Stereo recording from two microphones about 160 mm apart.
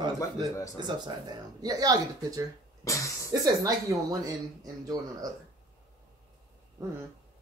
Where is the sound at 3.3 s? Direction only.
20° right (ahead or behind).